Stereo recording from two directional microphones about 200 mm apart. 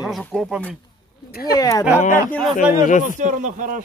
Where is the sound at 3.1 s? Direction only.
40° right (ahead or behind).